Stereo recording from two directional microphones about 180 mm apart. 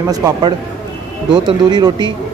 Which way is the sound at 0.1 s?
20° right (ahead or behind).